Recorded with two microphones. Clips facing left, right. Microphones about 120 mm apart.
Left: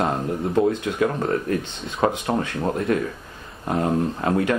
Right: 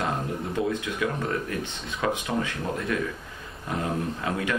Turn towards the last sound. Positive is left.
turn(degrees=40)  # may be behind; listen again after turning